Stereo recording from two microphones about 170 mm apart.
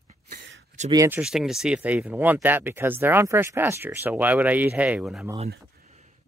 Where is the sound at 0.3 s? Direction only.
85° right.